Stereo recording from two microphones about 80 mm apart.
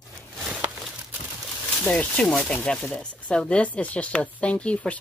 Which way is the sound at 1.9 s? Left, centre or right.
Centre.